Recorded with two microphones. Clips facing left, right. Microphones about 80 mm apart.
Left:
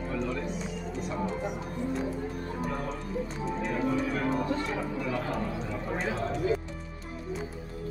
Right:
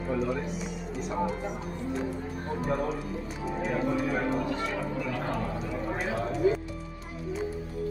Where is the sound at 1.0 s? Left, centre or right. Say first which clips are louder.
Right 4 dB; centre.